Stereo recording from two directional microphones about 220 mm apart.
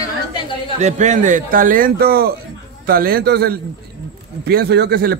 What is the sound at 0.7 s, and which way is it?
A man's voice, 35° right (ahead or behind).